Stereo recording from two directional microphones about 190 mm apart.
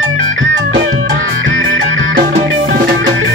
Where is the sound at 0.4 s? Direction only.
85° right.